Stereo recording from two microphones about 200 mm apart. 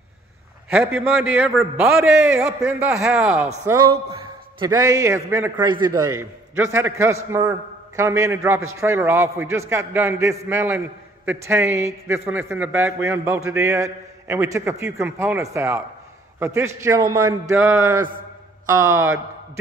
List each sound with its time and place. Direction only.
0.7 s a man's voice: 5° right (ahead or behind)
2.4 s a man's voice: 15° right (ahead or behind)
2.9 s a man's voice: centre (ahead or behind)
3.6 s a man's voice: 15° right (ahead or behind)